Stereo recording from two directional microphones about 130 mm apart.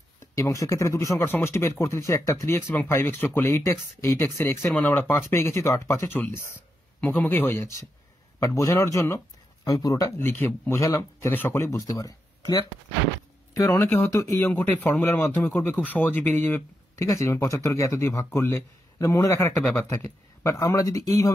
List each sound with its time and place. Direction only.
0.4 s a man's voice: 25° left (ahead or behind)
13.7 s speech: 10° left (ahead or behind)